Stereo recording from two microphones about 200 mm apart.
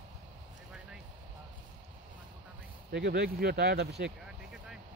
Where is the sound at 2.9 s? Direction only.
55° right (ahead or behind).